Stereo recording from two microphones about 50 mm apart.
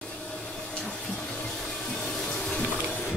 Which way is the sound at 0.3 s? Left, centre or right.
Centre.